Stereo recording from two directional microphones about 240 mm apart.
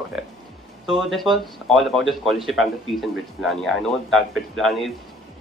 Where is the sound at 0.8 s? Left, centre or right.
Centre.